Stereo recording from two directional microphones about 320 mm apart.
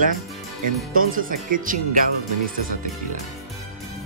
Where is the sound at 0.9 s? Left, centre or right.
Right.